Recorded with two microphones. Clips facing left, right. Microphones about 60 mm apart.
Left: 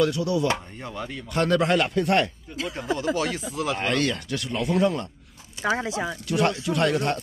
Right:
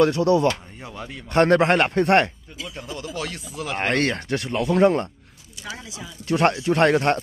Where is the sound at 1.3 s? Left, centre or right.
Right.